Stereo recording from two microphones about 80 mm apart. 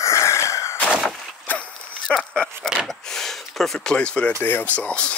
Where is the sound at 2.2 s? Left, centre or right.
Centre.